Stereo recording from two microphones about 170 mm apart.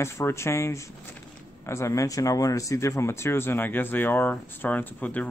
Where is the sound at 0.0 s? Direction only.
15° left (ahead or behind).